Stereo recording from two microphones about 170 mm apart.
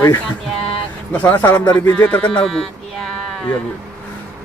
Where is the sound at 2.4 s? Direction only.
5° left (ahead or behind).